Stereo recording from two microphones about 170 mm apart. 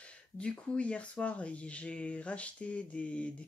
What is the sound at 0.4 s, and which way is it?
Speech, 5° left (ahead or behind).